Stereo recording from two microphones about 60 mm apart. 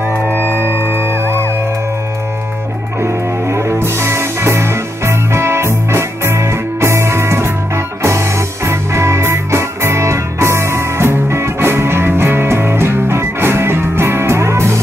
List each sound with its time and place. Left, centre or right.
3.0 s music: right